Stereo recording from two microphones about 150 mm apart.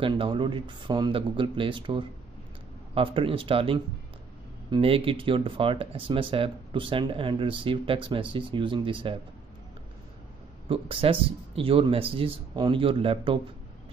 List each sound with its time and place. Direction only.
0.0 s speech: 35° right (ahead or behind)
10.7 s speech: 35° right (ahead or behind)